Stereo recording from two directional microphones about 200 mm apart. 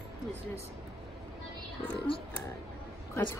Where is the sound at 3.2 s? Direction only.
15° left (ahead or behind).